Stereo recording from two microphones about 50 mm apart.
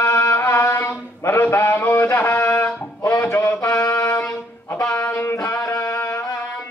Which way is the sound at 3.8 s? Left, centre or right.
Left.